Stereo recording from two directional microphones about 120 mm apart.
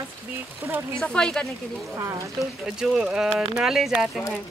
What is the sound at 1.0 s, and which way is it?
Speech, 5° left (ahead or behind).